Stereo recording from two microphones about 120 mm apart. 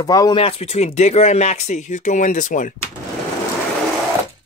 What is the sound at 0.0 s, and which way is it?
Speech, 30° left (ahead or behind).